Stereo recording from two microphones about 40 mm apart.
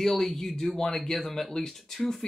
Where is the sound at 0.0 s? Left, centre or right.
Centre.